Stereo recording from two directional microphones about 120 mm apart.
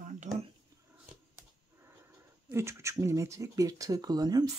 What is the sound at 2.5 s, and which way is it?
Speech, 25° right (ahead or behind).